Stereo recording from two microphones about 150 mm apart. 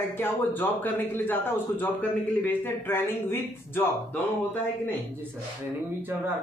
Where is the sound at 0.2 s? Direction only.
15° left (ahead or behind).